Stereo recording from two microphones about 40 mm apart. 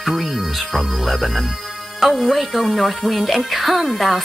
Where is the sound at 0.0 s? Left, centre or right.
Centre.